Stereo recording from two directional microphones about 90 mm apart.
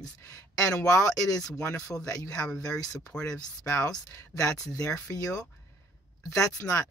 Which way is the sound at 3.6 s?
40° left (ahead or behind).